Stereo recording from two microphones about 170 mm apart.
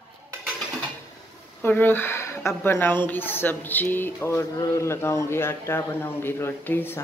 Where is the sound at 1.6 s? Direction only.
10° left (ahead or behind).